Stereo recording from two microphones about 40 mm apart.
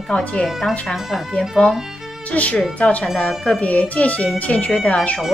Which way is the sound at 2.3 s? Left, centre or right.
Left.